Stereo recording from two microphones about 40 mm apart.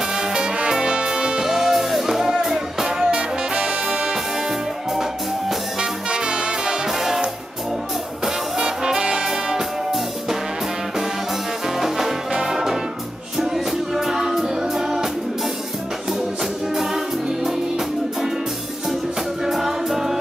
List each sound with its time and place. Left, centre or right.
0.1 s music: centre
5.8 s music: centre
6.9 s music: centre
8.5 s brass instrument: centre
11.6 s brass instrument: centre
13.4 s music: centre
16.7 s music: centre
19.4 s music: centre